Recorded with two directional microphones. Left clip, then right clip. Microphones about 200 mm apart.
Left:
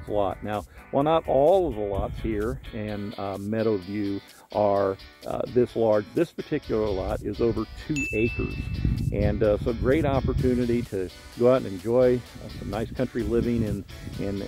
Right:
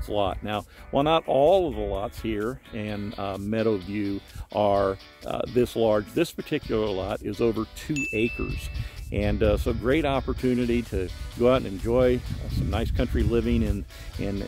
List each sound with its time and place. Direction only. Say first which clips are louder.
0.1 s speech: even; 25° right (ahead or behind)